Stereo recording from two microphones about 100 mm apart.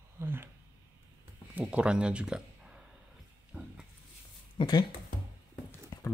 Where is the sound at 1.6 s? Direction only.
10° right (ahead or behind).